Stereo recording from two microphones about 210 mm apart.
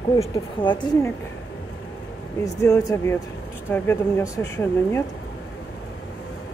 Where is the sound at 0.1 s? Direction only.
25° left (ahead or behind).